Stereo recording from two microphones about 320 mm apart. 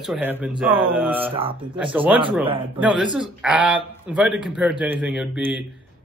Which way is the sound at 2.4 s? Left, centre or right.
Centre.